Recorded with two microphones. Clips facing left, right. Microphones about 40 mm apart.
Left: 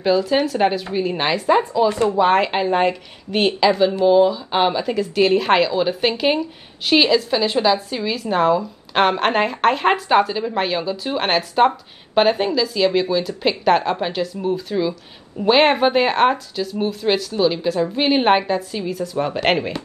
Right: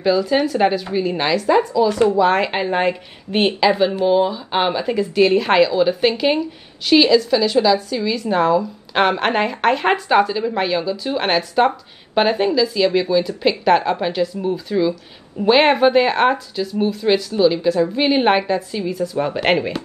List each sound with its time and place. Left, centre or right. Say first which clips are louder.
0.0 s a woman's voice: right 1 dB; centre
1.3 s a woman's voice: right 2 dB; left
2.3 s a woman's voice: left 1 dB; centre
2.9 s speech: right 2 dB; centre
5.2 s a woman's voice: right 2 dB; centre
6.9 s a woman's voice: right 3 dB; left
8.2 s a woman's voice: even; centre